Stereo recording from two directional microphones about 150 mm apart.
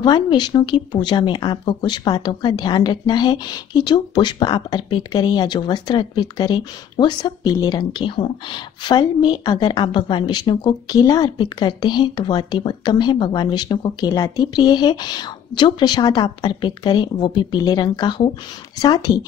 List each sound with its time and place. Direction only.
0.0 s speech: 30° left (ahead or behind)